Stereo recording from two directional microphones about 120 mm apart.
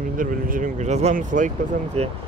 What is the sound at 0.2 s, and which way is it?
Speech, 85° right.